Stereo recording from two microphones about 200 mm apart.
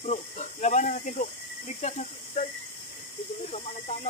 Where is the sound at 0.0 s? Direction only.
35° left (ahead or behind).